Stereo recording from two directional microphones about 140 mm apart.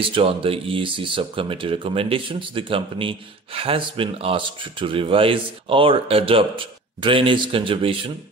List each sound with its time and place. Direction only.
0.1 s speech: 40° right (ahead or behind)